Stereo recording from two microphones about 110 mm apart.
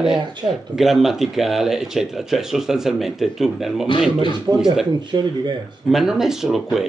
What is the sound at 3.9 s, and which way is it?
Speech, 50° left (ahead or behind).